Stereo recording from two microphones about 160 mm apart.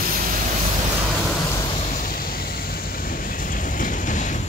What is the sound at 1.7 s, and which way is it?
Vehicle, 40° left (ahead or behind).